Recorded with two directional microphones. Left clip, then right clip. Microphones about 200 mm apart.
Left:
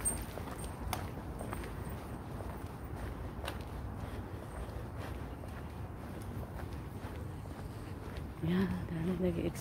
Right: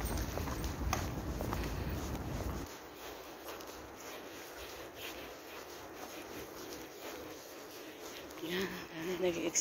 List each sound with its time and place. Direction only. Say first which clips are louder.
8.5 s speech: left 1 dB; 5° left (ahead or behind)